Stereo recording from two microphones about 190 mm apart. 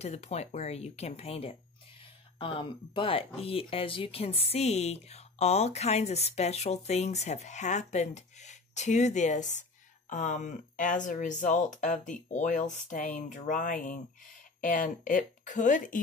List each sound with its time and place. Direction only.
0.0 s a woman's voice: 35° left (ahead or behind)